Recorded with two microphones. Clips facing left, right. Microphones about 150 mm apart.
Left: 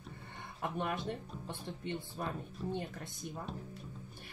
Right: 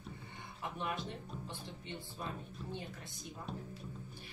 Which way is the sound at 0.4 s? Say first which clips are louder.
Left 5 dB; 55° left (ahead or behind).